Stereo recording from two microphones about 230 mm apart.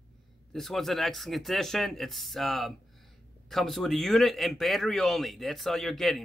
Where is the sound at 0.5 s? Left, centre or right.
Centre.